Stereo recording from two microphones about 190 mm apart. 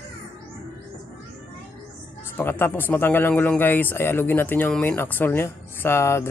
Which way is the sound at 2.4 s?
10° left (ahead or behind).